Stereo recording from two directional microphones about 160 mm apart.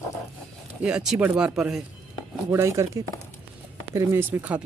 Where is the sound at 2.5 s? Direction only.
15° right (ahead or behind).